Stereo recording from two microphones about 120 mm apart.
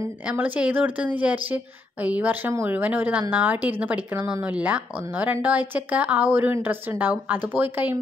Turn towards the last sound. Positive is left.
turn(degrees=-15)  # may be behind; listen again after turning